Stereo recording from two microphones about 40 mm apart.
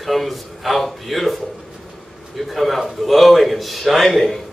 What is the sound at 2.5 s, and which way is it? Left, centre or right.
A man's voice, centre.